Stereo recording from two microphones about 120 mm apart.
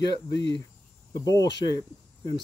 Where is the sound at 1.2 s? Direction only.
30° left (ahead or behind).